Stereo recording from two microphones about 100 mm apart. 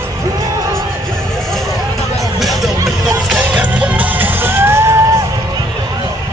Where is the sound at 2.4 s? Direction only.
Centre (ahead or behind).